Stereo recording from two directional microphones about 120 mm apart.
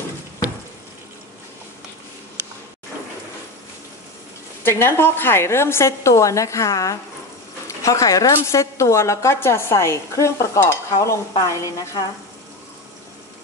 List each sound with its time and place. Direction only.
4.6 s a woman's voice: 20° left (ahead or behind)